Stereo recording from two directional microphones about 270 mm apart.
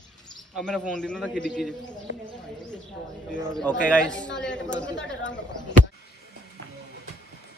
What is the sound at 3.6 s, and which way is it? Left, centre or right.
Speech, centre.